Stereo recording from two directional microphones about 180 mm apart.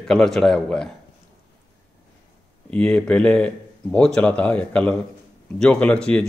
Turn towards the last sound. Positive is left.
turn(degrees=5)  # may be behind; listen again after turning